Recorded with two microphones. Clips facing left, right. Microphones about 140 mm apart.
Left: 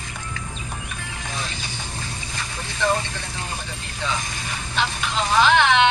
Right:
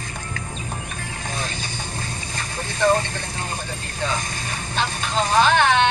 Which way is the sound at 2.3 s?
35° right (ahead or behind).